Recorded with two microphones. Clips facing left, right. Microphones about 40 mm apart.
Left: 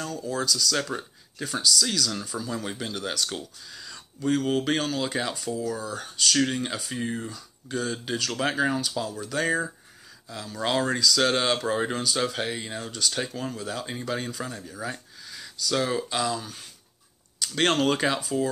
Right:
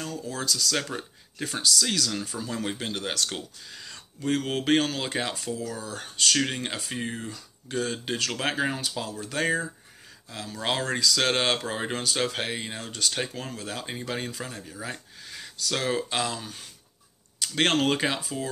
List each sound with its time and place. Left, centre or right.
0.0 s speech: right
4.3 s speech: right
14.0 s speech: right